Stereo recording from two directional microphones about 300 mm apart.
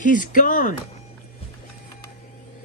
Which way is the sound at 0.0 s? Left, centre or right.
Left.